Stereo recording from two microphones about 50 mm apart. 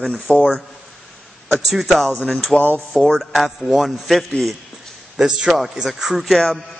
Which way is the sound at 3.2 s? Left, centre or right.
Centre.